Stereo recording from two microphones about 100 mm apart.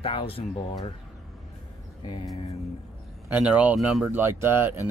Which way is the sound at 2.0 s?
55° left (ahead or behind).